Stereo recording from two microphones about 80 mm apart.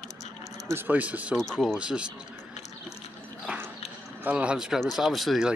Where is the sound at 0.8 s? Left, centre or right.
Centre.